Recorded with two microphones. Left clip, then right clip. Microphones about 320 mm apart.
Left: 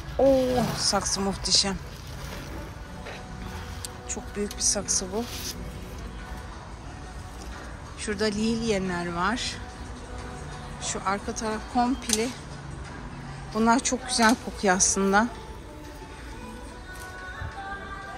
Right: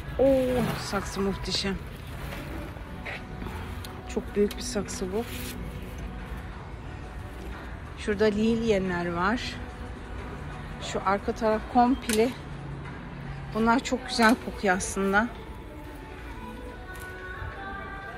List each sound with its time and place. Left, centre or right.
0.2 s a woman's voice: centre
4.1 s a woman's voice: centre
8.0 s speech: centre
10.8 s speech: centre
13.5 s a woman's voice: centre